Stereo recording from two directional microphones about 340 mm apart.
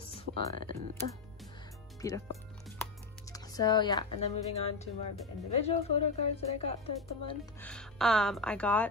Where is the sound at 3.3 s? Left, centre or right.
Centre.